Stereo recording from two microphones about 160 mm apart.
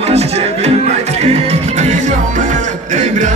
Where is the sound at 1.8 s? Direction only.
50° right (ahead or behind).